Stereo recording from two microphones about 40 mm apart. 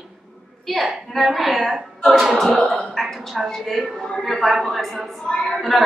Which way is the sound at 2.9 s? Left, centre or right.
Centre.